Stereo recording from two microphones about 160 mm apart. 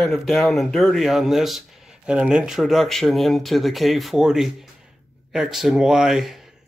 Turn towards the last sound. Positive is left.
turn(degrees=0)  # may be behind; listen again after turning